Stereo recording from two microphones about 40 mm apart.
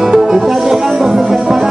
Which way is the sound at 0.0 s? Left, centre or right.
Centre.